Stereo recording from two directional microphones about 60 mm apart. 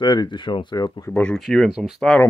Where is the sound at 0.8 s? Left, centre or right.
Left.